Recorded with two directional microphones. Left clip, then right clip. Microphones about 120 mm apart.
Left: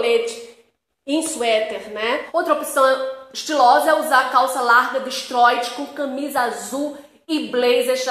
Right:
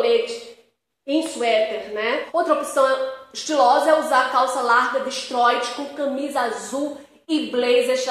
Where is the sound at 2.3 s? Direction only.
15° left (ahead or behind).